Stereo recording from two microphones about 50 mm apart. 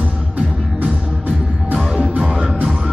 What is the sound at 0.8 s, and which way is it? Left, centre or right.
Music, right.